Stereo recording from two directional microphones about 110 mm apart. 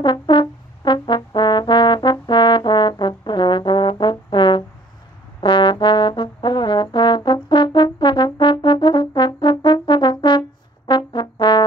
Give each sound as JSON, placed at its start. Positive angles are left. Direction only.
{"t": 0.0, "sound": "brass instrument", "side_deg": 45}